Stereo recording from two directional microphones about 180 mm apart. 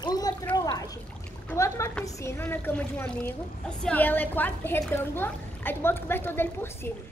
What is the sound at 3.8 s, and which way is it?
Speech, 10° left (ahead or behind).